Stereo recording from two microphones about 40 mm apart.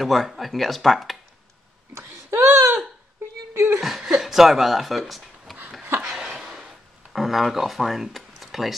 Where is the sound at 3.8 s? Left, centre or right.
Centre.